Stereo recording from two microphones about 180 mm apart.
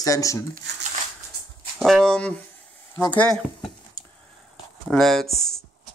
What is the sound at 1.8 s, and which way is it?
Speech, 5° left (ahead or behind).